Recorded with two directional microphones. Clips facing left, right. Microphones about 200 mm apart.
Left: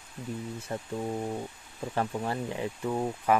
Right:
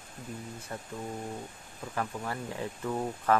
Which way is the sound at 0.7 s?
25° left (ahead or behind).